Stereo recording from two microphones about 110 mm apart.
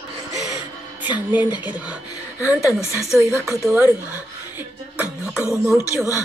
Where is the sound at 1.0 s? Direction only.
15° right (ahead or behind).